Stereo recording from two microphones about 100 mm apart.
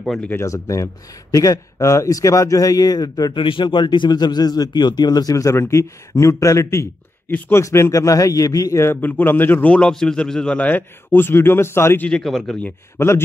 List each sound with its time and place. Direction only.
0.0 s speech: 5° left (ahead or behind)
0.3 s a man's voice: 30° left (ahead or behind)
3.3 s speech: 55° left (ahead or behind); by 6.9 s 30° left (ahead or behind)
7.2 s a man's voice: 20° left (ahead or behind)
7.6 s a man's voice: 30° left (ahead or behind)
12.1 s speech: 5° left (ahead or behind)